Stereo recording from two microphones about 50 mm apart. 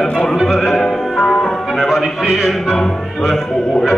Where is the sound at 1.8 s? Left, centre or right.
Centre.